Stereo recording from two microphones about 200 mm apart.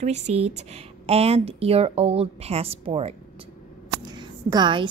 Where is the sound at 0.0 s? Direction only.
35° right (ahead or behind).